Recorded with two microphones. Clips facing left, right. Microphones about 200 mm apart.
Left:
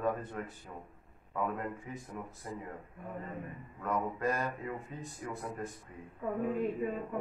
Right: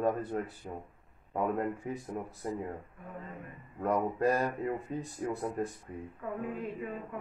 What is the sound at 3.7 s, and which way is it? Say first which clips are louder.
Speech: right 5 dB; 35° right (ahead or behind).